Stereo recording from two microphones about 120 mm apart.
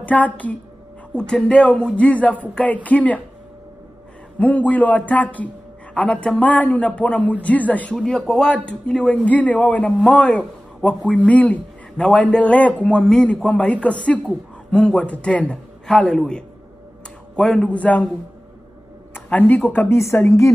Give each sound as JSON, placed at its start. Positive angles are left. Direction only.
{"t": 0.0, "sound": "speech", "side_deg": 10}
{"t": 4.4, "sound": "a man's voice", "side_deg": 10}
{"t": 19.1, "sound": "speech", "side_deg": 15}